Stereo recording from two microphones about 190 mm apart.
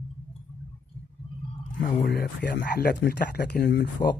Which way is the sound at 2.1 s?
55° left (ahead or behind).